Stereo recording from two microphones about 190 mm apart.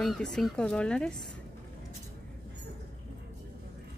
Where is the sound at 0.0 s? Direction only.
Centre (ahead or behind).